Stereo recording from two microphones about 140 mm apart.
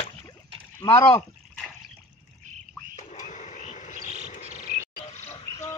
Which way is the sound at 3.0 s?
60° left (ahead or behind).